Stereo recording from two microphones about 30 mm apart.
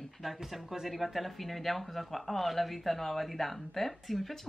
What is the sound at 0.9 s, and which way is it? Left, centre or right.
Speech, centre.